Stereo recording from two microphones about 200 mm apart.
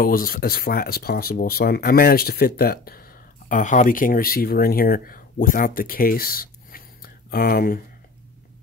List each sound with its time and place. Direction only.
0.0 s speech: 45° left (ahead or behind)